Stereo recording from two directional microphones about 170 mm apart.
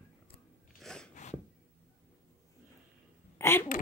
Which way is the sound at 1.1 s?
45° left (ahead or behind).